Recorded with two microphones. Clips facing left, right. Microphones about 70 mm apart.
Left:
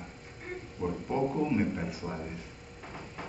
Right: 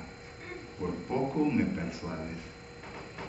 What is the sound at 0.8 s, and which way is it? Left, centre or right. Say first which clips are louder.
Speech: left 1 dB; centre.